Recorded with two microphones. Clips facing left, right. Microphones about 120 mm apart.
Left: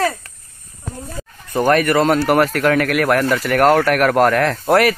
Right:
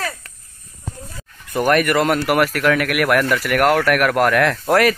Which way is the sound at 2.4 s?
40° left (ahead or behind).